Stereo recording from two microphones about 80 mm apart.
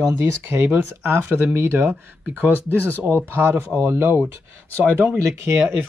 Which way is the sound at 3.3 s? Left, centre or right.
Right.